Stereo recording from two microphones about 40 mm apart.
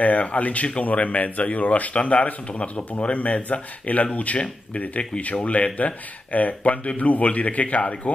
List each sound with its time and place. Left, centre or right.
0.0 s speech: left